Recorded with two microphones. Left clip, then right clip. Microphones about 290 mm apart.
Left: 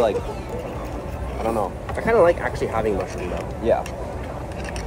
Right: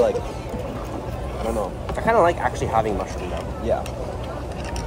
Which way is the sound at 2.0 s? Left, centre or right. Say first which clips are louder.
Left 1 dB; centre.